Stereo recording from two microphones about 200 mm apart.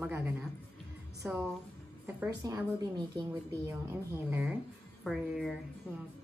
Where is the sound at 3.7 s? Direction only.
10° right (ahead or behind).